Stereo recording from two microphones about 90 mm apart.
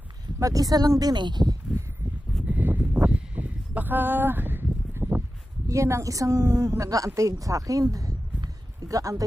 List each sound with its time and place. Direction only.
0.4 s speech: 40° right (ahead or behind)
2.4 s a sound: 20° right (ahead or behind)
5.7 s a woman's voice: 35° right (ahead or behind)